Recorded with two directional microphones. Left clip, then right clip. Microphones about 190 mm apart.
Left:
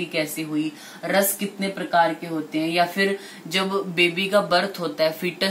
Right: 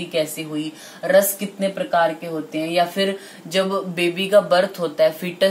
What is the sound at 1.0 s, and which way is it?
Speech, 50° right (ahead or behind).